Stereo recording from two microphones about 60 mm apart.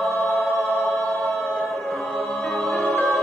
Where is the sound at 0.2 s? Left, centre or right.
Left.